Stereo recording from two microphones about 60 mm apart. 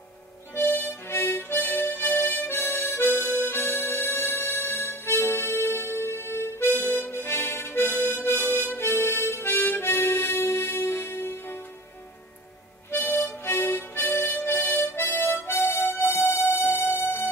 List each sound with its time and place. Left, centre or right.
0.6 s harmonica: left
12.9 s harmonica: left